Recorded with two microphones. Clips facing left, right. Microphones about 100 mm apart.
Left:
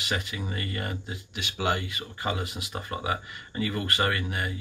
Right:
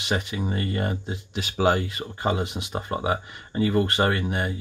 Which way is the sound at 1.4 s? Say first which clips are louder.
Right 7 dB; 40° right (ahead or behind).